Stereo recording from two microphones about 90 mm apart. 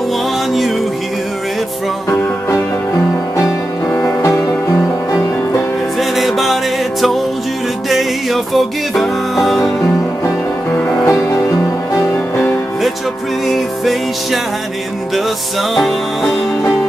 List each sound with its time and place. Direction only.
0.5 s music: centre (ahead or behind)
2.0 s music: 30° left (ahead or behind)
3.9 s music: 30° left (ahead or behind)
5.9 s music: centre (ahead or behind)
11.1 s music: 30° left (ahead or behind)
13.5 s music: centre (ahead or behind)
15.7 s music: centre (ahead or behind)